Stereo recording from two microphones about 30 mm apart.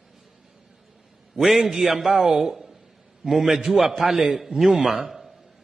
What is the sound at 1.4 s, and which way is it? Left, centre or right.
A man's voice, centre.